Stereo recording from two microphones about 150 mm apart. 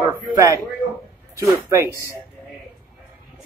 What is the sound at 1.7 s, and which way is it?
Speech, 20° right (ahead or behind).